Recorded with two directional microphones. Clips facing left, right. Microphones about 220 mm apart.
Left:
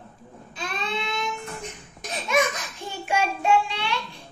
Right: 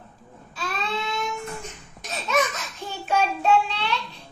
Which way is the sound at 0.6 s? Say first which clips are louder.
Right 1 dB; 20° left (ahead or behind).